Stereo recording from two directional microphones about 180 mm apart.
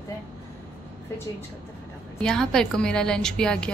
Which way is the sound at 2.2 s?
5° left (ahead or behind).